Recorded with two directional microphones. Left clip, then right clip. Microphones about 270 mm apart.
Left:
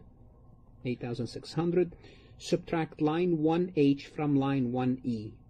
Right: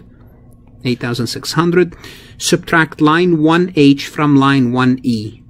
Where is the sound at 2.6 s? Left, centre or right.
Right.